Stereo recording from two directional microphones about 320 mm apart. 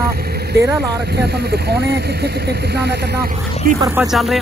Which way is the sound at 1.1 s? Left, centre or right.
Right.